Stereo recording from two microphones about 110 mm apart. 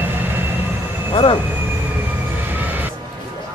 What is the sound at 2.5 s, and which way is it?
Music, 15° right (ahead or behind).